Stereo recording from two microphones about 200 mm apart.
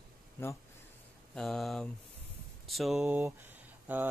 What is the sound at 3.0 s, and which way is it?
Speech, 10° right (ahead or behind).